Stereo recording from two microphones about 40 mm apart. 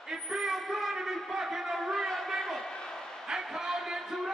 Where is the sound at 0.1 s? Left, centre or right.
Centre.